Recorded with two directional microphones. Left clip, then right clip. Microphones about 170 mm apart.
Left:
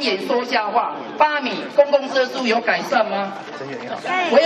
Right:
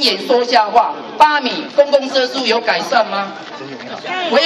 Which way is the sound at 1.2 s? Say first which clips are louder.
Right 6 dB; 70° right (ahead or behind).